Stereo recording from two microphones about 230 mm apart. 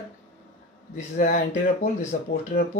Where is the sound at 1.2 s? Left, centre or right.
Left.